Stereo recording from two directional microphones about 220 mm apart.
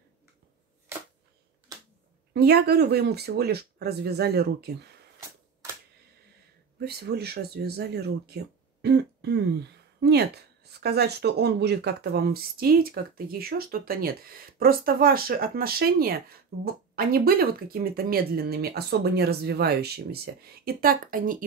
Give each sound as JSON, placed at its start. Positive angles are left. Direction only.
{"t": 2.3, "sound": "speech", "side_deg": -45}
{"t": 6.8, "sound": "speech", "side_deg": -45}